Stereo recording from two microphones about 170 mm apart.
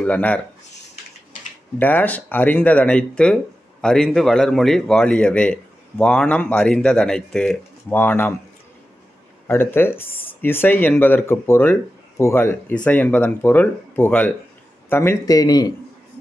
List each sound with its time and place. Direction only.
0.0 s speech: 10° left (ahead or behind)
1.8 s speech: 10° left (ahead or behind)
9.5 s a man's voice: 15° left (ahead or behind)